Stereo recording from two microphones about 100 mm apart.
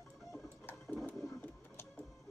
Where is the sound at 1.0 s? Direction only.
15° left (ahead or behind).